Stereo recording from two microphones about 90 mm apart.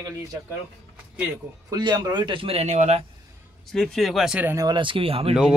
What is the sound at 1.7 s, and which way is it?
Speech, 45° right (ahead or behind).